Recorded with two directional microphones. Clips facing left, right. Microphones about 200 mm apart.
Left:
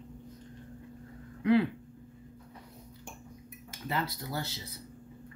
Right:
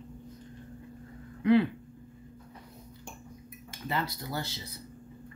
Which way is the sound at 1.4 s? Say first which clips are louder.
Right 2 dB; 5° left (ahead or behind).